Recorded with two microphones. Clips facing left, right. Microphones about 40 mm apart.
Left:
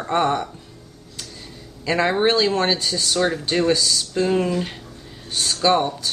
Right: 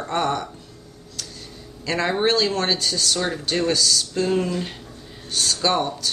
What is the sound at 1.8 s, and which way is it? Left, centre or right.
Speech, centre.